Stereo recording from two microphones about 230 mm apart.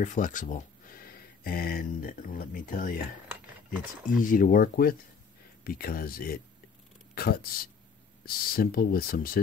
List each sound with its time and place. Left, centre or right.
0.0 s speech: left
4.2 s speech: left